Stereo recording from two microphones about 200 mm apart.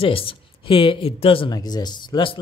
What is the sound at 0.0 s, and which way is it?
Speech, 25° left (ahead or behind).